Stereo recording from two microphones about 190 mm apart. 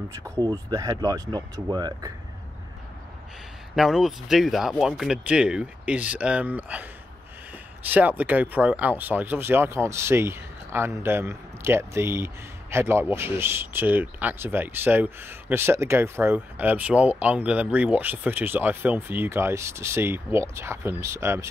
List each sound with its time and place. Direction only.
0.1 s speech: 15° right (ahead or behind)
3.7 s speech: centre (ahead or behind)
7.9 s speech: 10° right (ahead or behind)